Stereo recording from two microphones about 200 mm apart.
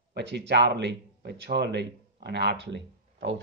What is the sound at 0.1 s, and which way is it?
Speech, 60° right (ahead or behind).